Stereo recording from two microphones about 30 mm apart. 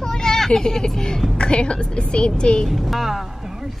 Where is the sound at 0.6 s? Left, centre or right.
Left.